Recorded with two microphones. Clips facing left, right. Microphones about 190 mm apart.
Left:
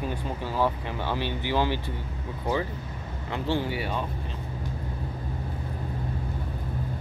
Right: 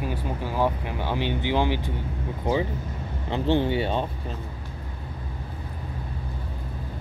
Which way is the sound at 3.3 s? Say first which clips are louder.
Right 5 dB; 25° right (ahead or behind).